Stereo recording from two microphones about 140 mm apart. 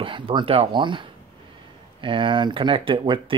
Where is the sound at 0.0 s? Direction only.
35° right (ahead or behind).